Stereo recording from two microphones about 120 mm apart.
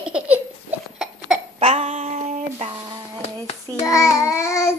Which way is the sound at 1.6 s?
60° right (ahead or behind).